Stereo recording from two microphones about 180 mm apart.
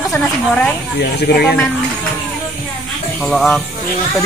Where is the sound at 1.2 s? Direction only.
65° left (ahead or behind).